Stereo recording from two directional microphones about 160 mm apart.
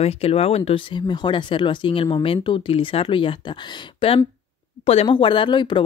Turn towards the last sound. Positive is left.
turn(degrees=30)  # may be behind; listen again after turning